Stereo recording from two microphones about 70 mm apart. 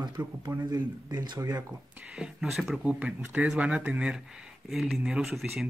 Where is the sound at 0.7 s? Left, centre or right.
Right.